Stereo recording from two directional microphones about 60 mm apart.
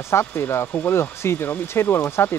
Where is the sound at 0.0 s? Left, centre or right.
Left.